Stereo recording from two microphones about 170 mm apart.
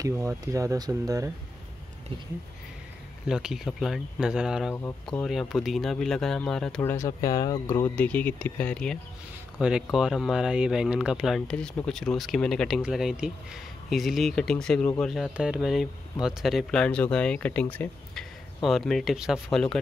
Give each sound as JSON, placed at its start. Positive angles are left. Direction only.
{"t": 0.0, "sound": "speech", "side_deg": -20}
{"t": 3.3, "sound": "speech", "side_deg": -5}
{"t": 6.8, "sound": "speech", "side_deg": 15}
{"t": 7.7, "sound": "speech", "side_deg": 10}
{"t": 9.6, "sound": "speech", "side_deg": -5}